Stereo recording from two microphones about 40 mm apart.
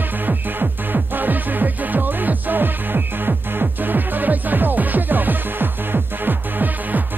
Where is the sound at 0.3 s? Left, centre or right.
Right.